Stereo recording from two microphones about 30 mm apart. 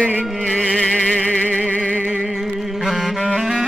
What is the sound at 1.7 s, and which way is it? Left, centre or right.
Music, left.